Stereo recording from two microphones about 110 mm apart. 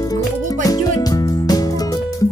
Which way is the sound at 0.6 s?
35° left (ahead or behind).